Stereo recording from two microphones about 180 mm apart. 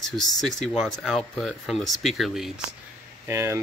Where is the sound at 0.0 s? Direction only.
Centre (ahead or behind).